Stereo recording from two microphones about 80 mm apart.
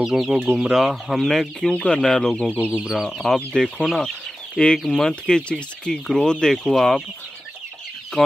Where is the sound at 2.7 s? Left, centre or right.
Centre.